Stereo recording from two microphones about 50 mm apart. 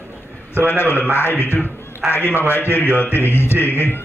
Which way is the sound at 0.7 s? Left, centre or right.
Left.